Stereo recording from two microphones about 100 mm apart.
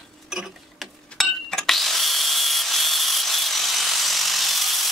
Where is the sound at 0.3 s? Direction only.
Centre (ahead or behind).